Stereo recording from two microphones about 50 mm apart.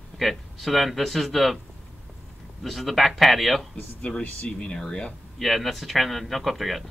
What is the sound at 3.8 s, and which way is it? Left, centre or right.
Speech, left.